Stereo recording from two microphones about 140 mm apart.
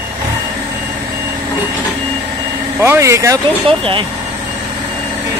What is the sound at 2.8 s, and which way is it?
Speech, 20° right (ahead or behind).